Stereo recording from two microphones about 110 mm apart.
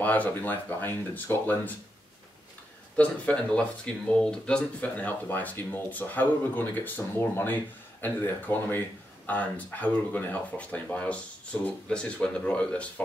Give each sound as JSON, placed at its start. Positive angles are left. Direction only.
{"t": 0.0, "sound": "speech", "side_deg": 15}
{"t": 3.0, "sound": "speech", "side_deg": 10}